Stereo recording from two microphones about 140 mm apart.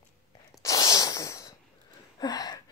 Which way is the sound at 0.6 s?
25° left (ahead or behind).